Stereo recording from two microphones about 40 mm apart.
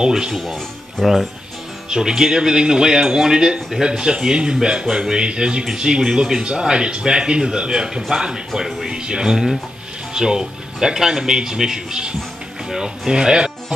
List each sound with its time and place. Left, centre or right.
0.0 s speech: centre
1.9 s speech: centre
8.5 s speech: centre
8.8 s speech: right